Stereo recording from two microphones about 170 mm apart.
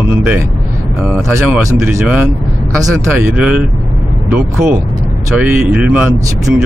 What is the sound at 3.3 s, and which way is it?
Speech, 5° right (ahead or behind).